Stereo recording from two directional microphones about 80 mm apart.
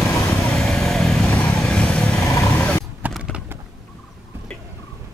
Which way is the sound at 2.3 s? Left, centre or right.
Left.